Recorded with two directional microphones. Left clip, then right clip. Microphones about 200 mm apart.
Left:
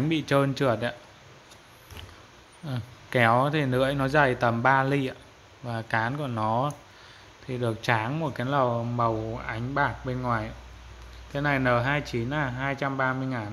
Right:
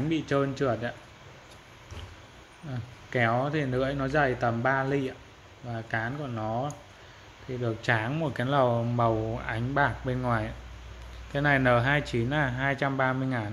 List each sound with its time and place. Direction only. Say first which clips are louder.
0.1 s speech: left 3 dB; 25° left (ahead or behind)
2.7 s speech: left 4 dB; 30° left (ahead or behind)
7.6 s speech: left 2 dB; 20° left (ahead or behind)